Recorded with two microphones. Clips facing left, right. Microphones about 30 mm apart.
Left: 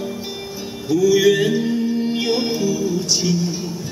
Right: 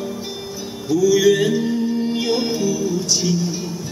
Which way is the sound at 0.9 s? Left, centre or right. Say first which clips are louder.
Even; left.